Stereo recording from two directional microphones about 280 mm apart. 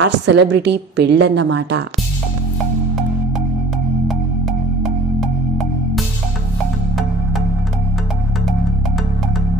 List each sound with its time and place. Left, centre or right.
0.0 s a woman's voice: right